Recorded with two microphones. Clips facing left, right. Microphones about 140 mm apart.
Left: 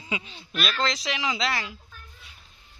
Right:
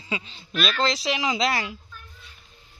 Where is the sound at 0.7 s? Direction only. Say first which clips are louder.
Right 4 dB; 30° right (ahead or behind).